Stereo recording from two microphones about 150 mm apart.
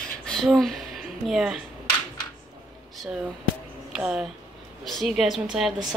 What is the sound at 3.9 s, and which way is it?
A woman's voice, 5° right (ahead or behind).